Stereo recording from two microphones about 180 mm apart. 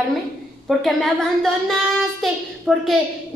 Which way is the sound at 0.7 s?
Centre (ahead or behind).